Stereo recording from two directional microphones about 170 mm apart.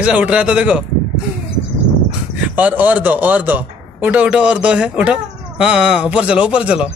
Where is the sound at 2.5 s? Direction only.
10° right (ahead or behind).